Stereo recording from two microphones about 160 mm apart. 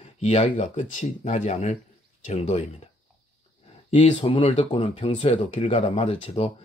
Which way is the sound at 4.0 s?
40° left (ahead or behind).